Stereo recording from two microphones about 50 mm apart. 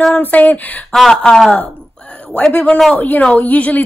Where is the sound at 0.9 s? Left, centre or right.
Centre.